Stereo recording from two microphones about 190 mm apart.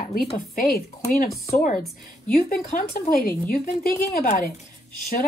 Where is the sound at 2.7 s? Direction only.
45° left (ahead or behind).